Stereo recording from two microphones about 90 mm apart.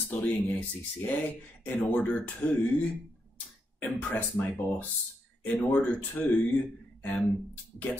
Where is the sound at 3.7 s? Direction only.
20° left (ahead or behind).